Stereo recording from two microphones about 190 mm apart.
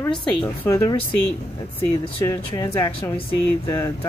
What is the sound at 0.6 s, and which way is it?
Speech, 15° left (ahead or behind).